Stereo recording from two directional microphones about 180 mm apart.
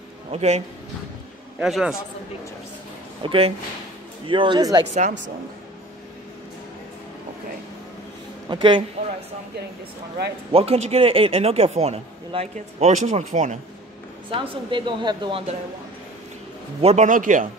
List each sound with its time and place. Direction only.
0.3 s speech: 35° right (ahead or behind)
1.6 s a man's voice: centre (ahead or behind)
3.2 s a woman's voice: 30° right (ahead or behind)
8.5 s a woman's voice: 25° right (ahead or behind)
10.5 s speech: 35° right (ahead or behind)
14.3 s a woman's voice: 30° right (ahead or behind)
16.8 s a man's voice: 40° right (ahead or behind)